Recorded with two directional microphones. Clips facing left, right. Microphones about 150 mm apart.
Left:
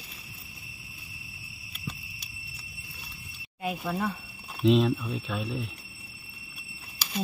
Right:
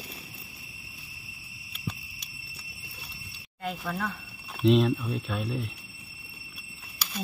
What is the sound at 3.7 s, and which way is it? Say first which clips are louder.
Speech: left 2 dB; 15° left (ahead or behind).